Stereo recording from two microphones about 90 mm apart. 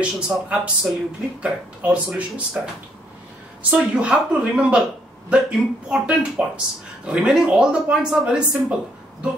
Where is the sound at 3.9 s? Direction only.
10° right (ahead or behind).